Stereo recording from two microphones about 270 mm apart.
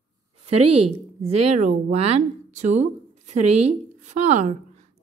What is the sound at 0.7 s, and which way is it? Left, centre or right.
A woman's voice, right.